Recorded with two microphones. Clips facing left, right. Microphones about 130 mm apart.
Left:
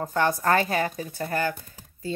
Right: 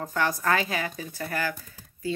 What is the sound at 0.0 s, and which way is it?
A woman's voice, 25° left (ahead or behind).